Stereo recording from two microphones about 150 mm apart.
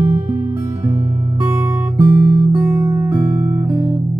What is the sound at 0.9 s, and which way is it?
Music, 15° right (ahead or behind).